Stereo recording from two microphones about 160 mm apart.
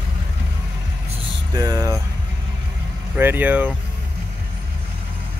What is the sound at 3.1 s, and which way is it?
Speech, 10° right (ahead or behind).